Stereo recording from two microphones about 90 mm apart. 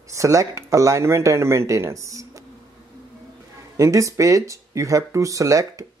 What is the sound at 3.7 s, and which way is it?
Speech, 35° right (ahead or behind).